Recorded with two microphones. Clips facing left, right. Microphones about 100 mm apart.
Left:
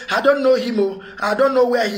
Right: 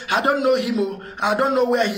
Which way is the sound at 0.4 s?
45° left (ahead or behind).